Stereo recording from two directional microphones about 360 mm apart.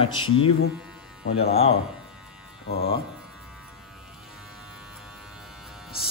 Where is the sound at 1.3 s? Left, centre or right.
Centre.